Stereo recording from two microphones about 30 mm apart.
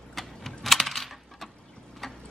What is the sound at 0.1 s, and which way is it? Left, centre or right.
Coin, centre.